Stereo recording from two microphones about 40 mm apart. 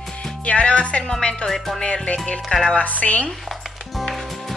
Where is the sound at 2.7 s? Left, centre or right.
Left.